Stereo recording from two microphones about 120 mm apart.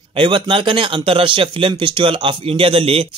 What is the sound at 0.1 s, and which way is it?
Speech, 45° right (ahead or behind).